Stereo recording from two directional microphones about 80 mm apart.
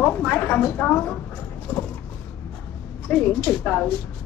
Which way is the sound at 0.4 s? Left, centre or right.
Left.